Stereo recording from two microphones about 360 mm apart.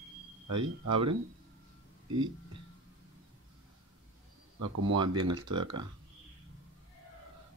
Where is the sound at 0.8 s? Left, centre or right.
Right.